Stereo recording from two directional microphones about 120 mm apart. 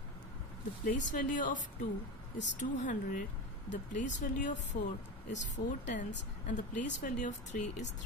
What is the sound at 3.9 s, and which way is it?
Speech, 90° left.